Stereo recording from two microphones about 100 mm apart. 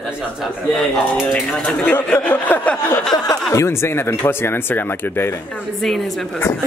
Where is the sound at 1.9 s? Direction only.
20° left (ahead or behind).